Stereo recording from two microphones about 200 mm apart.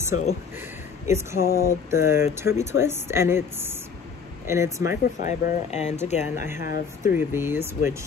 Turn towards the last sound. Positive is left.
turn(degrees=-10)  # may be behind; listen again after turning